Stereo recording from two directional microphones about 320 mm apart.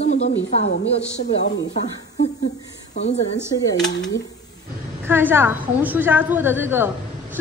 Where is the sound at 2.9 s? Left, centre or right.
Left.